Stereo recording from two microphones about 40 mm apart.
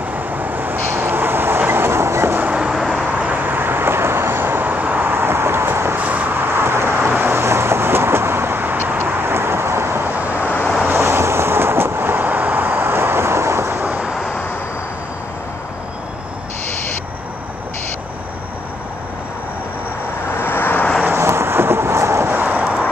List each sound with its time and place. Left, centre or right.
0.1 s vehicle: right
0.8 s vehicle: right
1.7 s train: right
3.1 s vehicle: right
5.0 s vehicle: right
5.9 s vehicle: right
6.5 s vehicle: right
7.1 s vehicle: right
10.1 s vehicle: right
10.9 s vehicle: right
20.3 s vehicle: left
21.1 s vehicle: right
22.6 s vehicle: right